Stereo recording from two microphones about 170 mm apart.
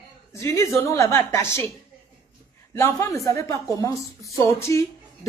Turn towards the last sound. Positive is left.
turn(degrees=15)  # may be behind; listen again after turning